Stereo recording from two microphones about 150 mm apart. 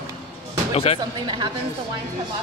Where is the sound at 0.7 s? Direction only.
40° left (ahead or behind).